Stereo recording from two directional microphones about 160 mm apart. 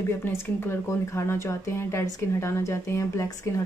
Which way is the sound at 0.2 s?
15° left (ahead or behind).